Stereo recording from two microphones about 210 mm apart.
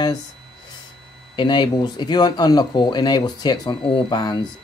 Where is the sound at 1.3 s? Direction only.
20° left (ahead or behind).